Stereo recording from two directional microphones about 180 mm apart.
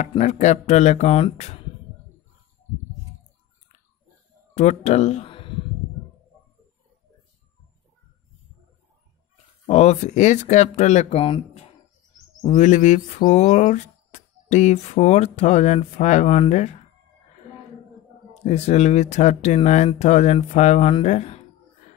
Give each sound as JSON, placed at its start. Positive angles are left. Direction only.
{"t": 0.0, "sound": "speech", "side_deg": 40}
{"t": 4.6, "sound": "speech", "side_deg": 40}
{"t": 9.7, "sound": "speech", "side_deg": 35}
{"t": 12.5, "sound": "speech", "side_deg": 40}
{"t": 18.3, "sound": "speech", "side_deg": 35}